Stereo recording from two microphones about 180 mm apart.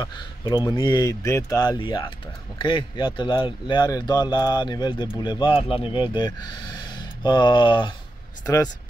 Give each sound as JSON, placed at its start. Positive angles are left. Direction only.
{"t": 0.0, "sound": "speech", "side_deg": 20}